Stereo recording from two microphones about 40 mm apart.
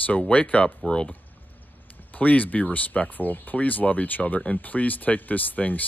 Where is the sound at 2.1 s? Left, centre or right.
Left.